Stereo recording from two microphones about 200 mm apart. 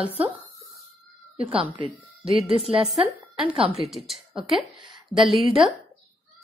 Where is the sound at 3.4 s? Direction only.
5° right (ahead or behind).